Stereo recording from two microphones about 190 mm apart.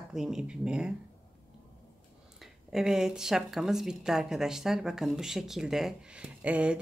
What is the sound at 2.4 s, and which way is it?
Speech, centre (ahead or behind).